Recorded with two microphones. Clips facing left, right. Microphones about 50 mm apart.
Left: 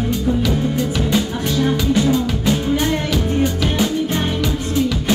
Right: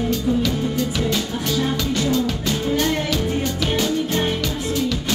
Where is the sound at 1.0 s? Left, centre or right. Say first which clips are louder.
Left 3 dB; centre.